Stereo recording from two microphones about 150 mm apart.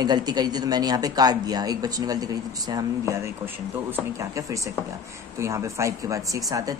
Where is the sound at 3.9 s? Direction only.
20° right (ahead or behind).